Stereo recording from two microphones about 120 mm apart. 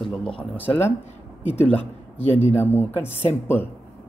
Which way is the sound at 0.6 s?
15° left (ahead or behind).